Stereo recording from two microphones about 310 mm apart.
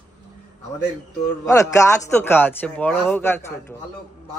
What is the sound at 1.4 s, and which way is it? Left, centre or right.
Speech, centre.